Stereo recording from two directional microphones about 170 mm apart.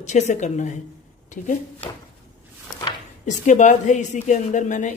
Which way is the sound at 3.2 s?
45° left (ahead or behind).